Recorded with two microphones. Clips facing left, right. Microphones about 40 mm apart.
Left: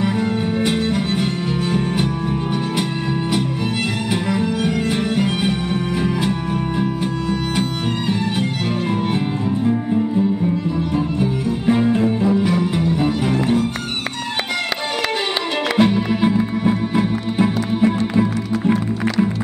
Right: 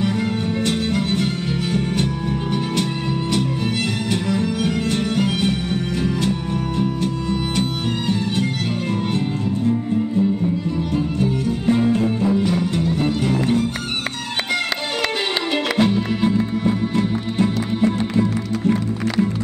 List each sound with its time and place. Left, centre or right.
0.7 s music: centre
4.1 s music: centre
11.1 s music: centre
15.7 s music: centre